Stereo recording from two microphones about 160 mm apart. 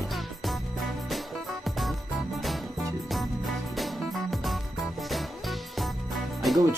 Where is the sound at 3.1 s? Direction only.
Centre (ahead or behind).